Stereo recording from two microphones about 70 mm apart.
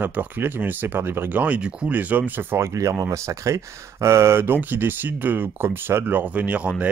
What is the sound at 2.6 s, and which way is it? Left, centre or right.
Speech, right.